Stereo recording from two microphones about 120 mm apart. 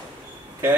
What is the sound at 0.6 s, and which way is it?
Speech, 20° right (ahead or behind).